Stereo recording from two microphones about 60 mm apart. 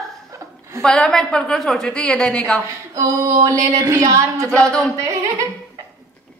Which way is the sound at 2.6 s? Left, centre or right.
Right.